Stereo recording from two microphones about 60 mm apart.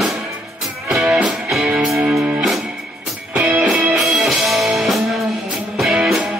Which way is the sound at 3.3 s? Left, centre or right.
Right.